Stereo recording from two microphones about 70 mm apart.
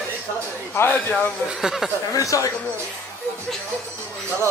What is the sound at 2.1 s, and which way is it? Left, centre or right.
Speech, left.